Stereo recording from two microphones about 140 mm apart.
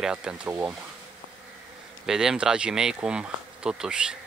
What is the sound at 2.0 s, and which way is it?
Speech, 5° right (ahead or behind).